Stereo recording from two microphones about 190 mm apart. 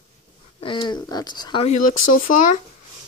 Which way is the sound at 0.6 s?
25° left (ahead or behind).